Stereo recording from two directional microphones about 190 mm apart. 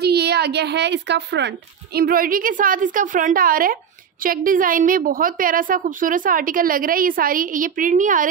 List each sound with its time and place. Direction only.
0.0 s a woman's voice: 60° right (ahead or behind)
2.0 s a woman's voice: 50° right (ahead or behind)